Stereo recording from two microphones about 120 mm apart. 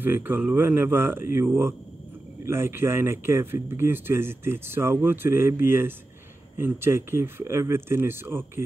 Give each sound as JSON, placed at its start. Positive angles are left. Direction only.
{"t": 0.0, "sound": "speech", "side_deg": -15}